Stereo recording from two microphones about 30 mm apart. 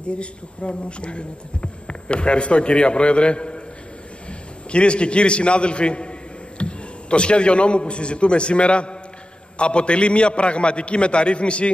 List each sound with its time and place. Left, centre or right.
0.0 s a man's voice: left